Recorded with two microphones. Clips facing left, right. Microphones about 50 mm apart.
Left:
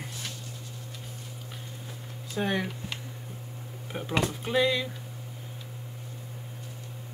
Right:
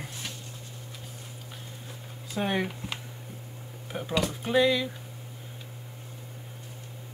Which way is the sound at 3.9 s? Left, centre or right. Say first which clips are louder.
Even; centre.